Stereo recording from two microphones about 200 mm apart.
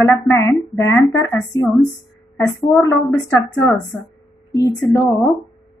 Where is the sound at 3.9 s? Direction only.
Centre (ahead or behind).